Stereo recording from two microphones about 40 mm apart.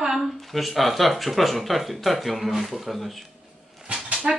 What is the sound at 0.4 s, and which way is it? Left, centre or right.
Speech, centre.